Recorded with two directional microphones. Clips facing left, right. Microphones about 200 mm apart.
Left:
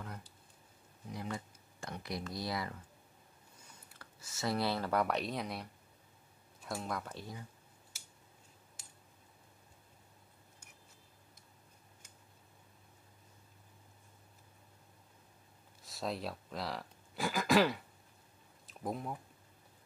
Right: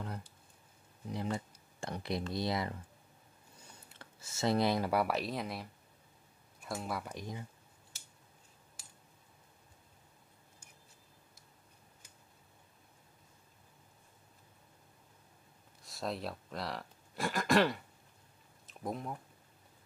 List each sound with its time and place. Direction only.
1.1 s a sound: 30° right (ahead or behind)
3.9 s speech: 25° right (ahead or behind)
15.8 s speech: centre (ahead or behind)